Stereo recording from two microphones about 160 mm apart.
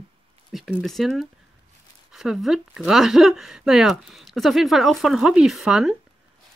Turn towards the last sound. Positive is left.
turn(degrees=0)  # may be behind; listen again after turning